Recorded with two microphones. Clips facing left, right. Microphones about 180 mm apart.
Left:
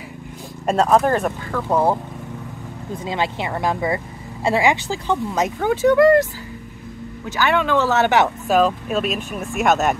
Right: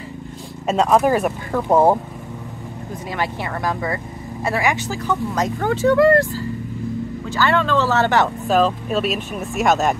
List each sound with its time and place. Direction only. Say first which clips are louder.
0.7 s speech: right 1 dB; centre (ahead or behind)
1.5 s speech: right 4 dB; 25° right (ahead or behind)
3.1 s speech: left 2 dB; 20° left (ahead or behind)
5.6 s speech: left 1 dB; 15° left (ahead or behind)
7.2 s speech: even; 15° left (ahead or behind)
8.5 s speech: even; 5° left (ahead or behind)